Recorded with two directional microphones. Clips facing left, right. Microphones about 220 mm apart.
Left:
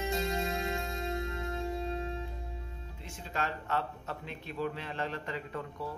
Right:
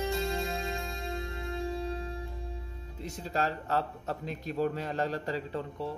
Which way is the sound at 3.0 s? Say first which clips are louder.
Right 5 dB; 35° right (ahead or behind).